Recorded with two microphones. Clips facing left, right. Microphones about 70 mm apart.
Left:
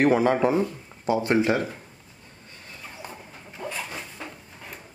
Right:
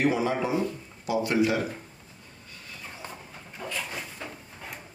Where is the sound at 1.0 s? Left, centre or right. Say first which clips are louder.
Left 3 dB; left.